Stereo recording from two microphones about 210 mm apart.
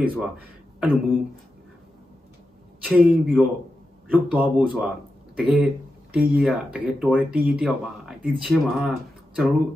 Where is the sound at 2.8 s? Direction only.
Centre (ahead or behind).